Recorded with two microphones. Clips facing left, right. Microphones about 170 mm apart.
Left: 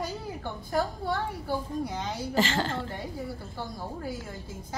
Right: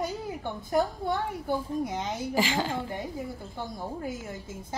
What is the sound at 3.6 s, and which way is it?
Speech, 20° right (ahead or behind).